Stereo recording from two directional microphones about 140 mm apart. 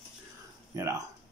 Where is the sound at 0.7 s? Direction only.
20° right (ahead or behind).